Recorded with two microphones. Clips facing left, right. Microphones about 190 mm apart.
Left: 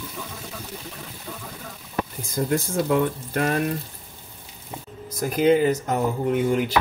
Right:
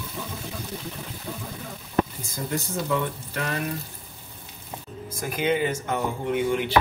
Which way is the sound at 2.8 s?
50° left (ahead or behind).